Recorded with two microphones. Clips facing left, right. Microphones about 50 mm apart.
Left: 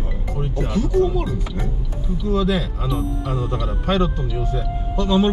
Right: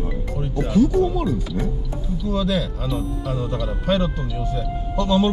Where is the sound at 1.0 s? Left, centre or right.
Centre.